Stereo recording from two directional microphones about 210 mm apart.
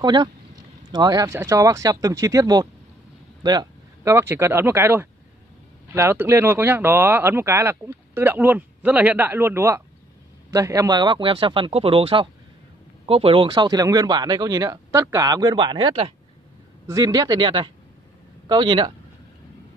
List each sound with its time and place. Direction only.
0.0 s speech: 20° right (ahead or behind)